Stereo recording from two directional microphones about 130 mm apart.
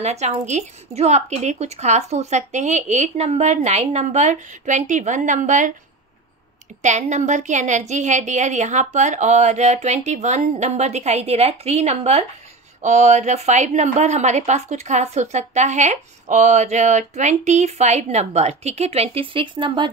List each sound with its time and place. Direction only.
0.0 s a woman's voice: 60° right (ahead or behind)
6.8 s a woman's voice: 65° right (ahead or behind)
12.8 s a woman's voice: 65° right (ahead or behind); by 19.9 s 40° right (ahead or behind)